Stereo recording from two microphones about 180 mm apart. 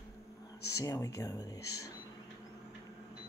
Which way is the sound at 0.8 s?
20° left (ahead or behind).